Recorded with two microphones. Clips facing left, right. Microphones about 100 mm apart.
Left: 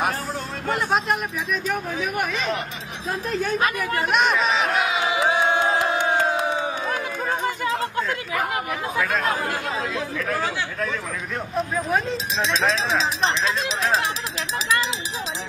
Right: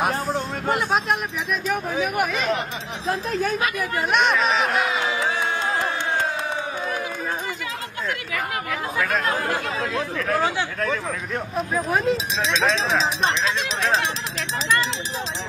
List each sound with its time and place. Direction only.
0.7 s speech: centre (ahead or behind)
5.0 s crowd: 15° left (ahead or behind)
11.5 s speech: centre (ahead or behind)